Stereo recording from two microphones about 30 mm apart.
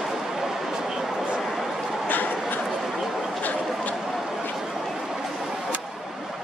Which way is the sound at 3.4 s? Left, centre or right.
Left.